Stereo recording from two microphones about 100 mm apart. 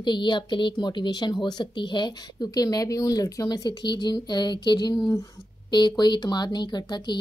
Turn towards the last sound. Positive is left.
turn(degrees=50)  # may be behind; listen again after turning